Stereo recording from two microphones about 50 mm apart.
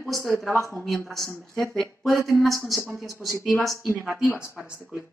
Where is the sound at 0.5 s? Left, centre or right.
Right.